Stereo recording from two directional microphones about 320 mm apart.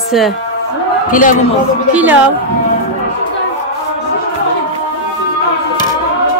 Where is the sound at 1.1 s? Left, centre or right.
Left.